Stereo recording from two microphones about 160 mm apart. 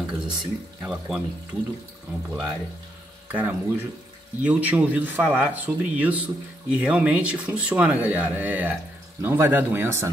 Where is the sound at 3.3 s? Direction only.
10° right (ahead or behind).